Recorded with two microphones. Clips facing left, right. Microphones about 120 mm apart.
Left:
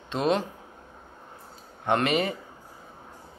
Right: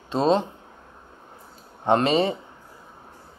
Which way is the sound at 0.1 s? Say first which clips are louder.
Right 4 dB; 30° right (ahead or behind).